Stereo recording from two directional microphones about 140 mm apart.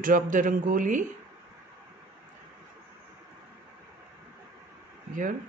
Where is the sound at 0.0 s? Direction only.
70° right (ahead or behind).